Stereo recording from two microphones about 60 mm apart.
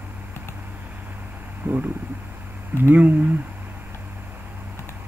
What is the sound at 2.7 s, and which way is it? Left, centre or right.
Speech, right.